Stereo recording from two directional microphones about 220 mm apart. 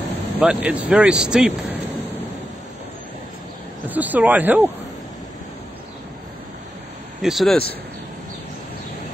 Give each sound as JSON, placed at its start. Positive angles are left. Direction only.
{"t": 0.4, "sound": "speech", "side_deg": -5}
{"t": 3.9, "sound": "speech", "side_deg": -5}
{"t": 7.2, "sound": "speech", "side_deg": 0}